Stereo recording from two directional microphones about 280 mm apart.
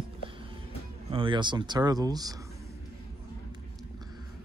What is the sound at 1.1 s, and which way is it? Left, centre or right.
Speech, centre.